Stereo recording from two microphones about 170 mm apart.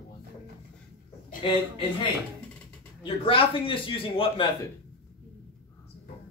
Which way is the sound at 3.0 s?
30° left (ahead or behind).